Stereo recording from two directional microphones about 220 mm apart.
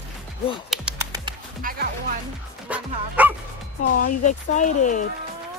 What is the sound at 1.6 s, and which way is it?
Music, 40° right (ahead or behind).